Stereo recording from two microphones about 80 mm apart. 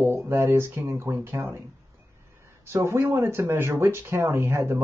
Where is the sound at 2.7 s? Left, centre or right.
Right.